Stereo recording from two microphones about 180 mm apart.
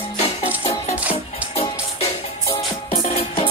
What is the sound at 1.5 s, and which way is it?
Music, 35° left (ahead or behind).